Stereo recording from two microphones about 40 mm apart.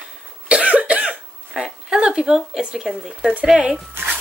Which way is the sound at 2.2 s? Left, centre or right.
Centre.